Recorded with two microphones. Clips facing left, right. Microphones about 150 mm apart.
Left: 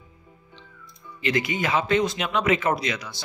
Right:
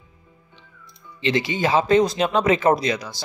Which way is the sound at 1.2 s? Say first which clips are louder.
Right 4 dB; 30° right (ahead or behind).